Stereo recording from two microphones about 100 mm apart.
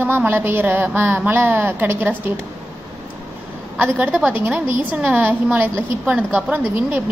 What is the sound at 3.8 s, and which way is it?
A woman's voice, 10° right (ahead or behind).